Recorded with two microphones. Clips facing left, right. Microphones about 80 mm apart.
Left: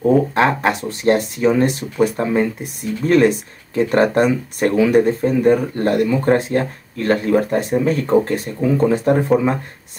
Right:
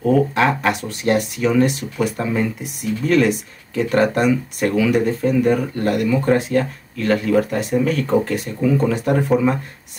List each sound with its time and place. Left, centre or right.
0.0 s speech: left